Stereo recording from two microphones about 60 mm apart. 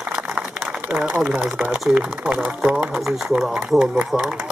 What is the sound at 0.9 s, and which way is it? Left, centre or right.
Speech, centre.